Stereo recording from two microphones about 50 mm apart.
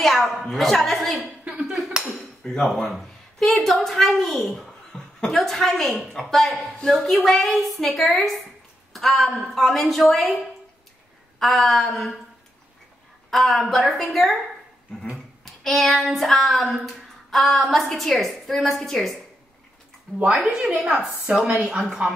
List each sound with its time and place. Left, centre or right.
0.0 s a woman's voice: centre
1.4 s dishes: centre
2.6 s a woman's voice: centre
8.9 s a sound: centre
9.3 s a woman's voice: centre
11.3 s a woman's voice: centre
13.3 s a woman's voice: centre
15.4 s child singing: centre
16.7 s a woman's voice: centre
20.6 s a woman's voice: centre
21.3 s speech: right